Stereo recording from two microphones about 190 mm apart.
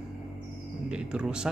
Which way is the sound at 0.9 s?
5° right (ahead or behind).